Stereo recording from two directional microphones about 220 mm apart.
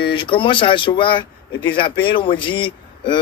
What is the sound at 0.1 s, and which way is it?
A man's voice, 20° left (ahead or behind).